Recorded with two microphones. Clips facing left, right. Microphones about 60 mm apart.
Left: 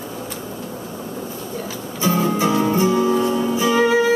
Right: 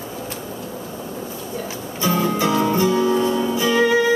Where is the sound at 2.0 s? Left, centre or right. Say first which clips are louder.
Left 1 dB; left.